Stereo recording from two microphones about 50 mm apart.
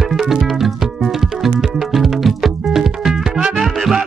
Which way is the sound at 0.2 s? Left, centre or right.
Centre.